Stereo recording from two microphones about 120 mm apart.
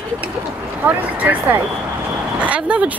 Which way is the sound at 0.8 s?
15° right (ahead or behind).